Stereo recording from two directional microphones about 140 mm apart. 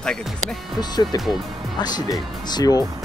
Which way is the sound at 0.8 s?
30° left (ahead or behind).